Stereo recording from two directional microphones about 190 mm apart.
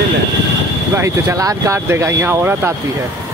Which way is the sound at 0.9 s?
15° right (ahead or behind).